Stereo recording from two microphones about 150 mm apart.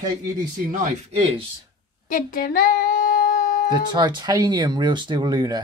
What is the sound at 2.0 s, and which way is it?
Female singing, 70° left (ahead or behind).